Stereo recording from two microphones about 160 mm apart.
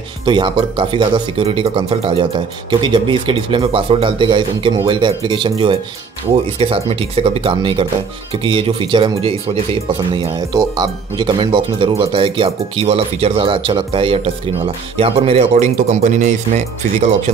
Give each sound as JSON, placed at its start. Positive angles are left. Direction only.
{"t": 0.2, "sound": "a man's voice", "side_deg": -30}